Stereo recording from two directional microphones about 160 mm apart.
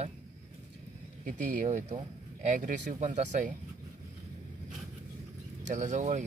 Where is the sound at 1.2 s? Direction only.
50° right (ahead or behind).